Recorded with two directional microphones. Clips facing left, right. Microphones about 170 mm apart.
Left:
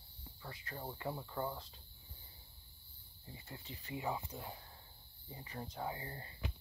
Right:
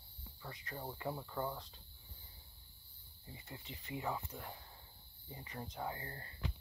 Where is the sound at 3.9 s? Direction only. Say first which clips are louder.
Left 1 dB; 15° left (ahead or behind).